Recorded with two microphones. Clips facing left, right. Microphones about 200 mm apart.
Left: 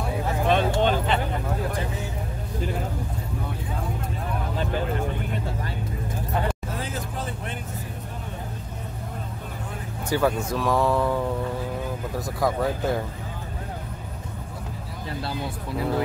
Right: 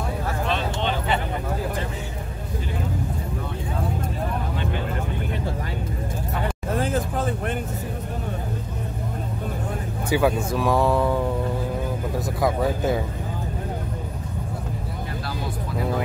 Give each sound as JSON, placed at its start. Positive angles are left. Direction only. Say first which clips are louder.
{"t": 0.5, "sound": "a sound", "louder": "left 7 dB", "side_deg": 50}
{"t": 6.8, "sound": "vehicle", "louder": "right 8 dB", "side_deg": -50}
{"t": 10.1, "sound": "speech", "louder": "right 2 dB", "side_deg": -5}
{"t": 12.4, "sound": "speech", "louder": "right 1 dB", "side_deg": -5}